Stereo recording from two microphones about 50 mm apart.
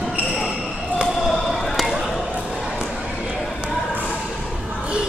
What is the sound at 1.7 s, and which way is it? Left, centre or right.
Basketball bounce, centre.